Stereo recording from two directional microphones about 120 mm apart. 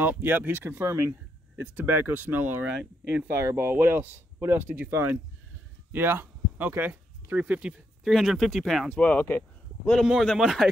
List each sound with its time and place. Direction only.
0.0 s speech: 15° right (ahead or behind)
8.0 s speech: centre (ahead or behind)
8.9 s speech: 10° left (ahead or behind)
10.0 s speech: centre (ahead or behind)